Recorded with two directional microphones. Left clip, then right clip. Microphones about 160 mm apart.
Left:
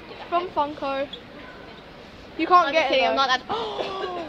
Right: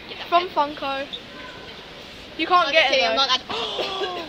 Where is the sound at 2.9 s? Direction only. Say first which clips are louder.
Right 1 dB; 55° left (ahead or behind).